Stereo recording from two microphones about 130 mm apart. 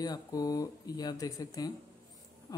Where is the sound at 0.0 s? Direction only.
30° left (ahead or behind).